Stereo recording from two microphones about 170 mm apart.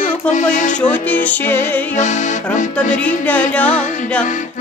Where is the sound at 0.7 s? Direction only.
10° left (ahead or behind).